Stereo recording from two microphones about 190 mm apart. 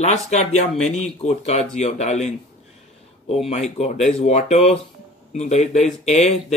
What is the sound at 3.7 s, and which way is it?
Speech, 35° left (ahead or behind).